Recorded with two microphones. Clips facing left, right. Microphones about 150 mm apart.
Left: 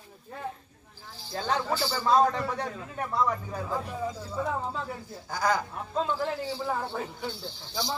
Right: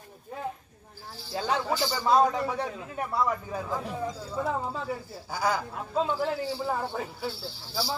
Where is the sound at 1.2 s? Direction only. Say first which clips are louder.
Right 1 dB; 10° right (ahead or behind).